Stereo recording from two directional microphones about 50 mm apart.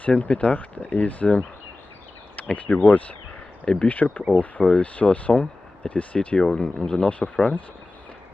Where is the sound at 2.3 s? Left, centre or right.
Left.